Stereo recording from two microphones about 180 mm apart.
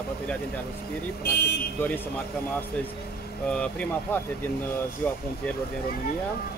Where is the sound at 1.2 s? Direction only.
60° left (ahead or behind).